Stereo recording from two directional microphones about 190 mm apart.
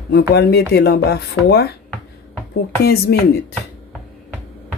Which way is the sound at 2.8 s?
55° left (ahead or behind).